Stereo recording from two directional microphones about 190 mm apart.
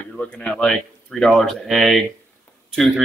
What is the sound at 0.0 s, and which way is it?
Speech, 5° left (ahead or behind).